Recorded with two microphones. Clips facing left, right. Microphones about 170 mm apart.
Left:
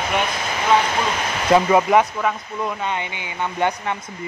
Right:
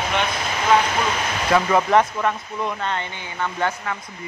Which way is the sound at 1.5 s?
20° left (ahead or behind).